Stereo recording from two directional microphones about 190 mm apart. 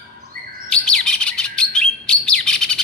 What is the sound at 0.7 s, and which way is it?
Bird, 5° left (ahead or behind).